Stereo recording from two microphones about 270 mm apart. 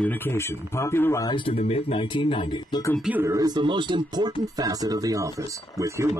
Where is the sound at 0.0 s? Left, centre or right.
Centre.